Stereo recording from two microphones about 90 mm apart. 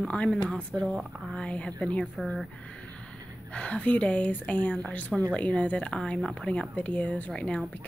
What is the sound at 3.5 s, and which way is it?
Speech, 15° left (ahead or behind).